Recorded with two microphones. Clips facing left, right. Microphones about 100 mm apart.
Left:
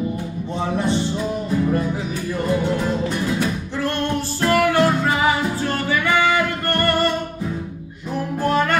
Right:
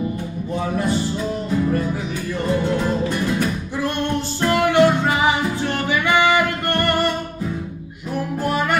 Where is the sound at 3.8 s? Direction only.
15° right (ahead or behind).